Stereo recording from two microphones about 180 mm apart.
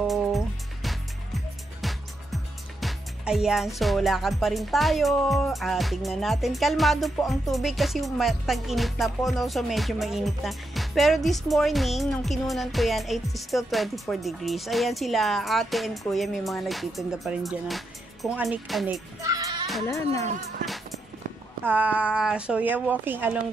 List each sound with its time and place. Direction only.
0.0 s music: centre (ahead or behind)
19.2 s music: 20° right (ahead or behind)
19.9 s speech: 15° left (ahead or behind)
21.6 s speech: 10° right (ahead or behind)